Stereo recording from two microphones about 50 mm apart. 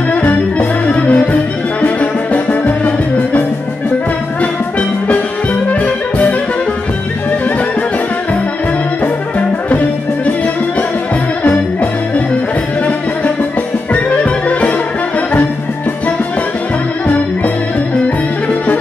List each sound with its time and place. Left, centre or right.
0.1 s music: left
4.4 s music: left
14.1 s music: left